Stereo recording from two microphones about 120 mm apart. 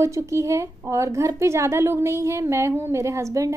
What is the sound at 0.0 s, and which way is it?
A woman's voice, 25° right (ahead or behind).